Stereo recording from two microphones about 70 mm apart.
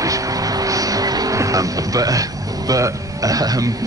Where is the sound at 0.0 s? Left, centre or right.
Right.